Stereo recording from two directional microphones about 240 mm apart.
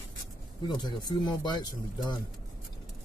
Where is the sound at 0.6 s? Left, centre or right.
Centre.